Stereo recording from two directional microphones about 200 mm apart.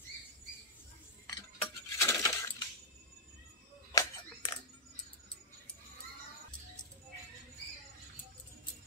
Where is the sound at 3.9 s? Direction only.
15° left (ahead or behind).